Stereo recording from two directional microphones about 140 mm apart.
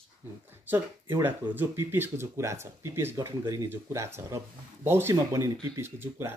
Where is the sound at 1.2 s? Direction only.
15° right (ahead or behind).